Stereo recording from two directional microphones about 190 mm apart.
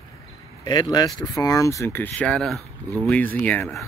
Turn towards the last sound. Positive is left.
turn(degrees=10)  # may be behind; listen again after turning